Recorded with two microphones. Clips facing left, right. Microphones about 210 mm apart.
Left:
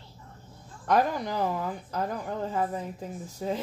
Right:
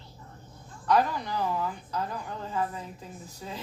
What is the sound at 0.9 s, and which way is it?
Speech, 45° left (ahead or behind).